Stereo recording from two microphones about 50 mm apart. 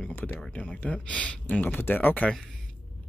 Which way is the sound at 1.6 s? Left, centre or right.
Left.